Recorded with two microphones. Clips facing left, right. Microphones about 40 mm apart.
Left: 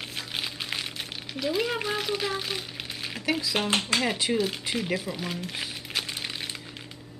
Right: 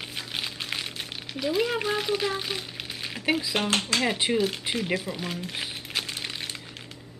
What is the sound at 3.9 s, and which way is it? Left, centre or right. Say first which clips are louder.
Speech: even; left.